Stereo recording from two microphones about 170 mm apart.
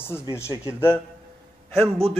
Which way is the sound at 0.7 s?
15° left (ahead or behind).